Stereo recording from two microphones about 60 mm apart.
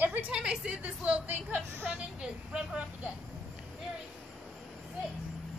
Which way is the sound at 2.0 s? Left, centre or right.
Centre.